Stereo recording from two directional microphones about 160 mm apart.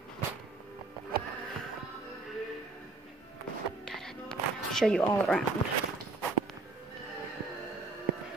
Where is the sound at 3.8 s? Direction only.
5° left (ahead or behind).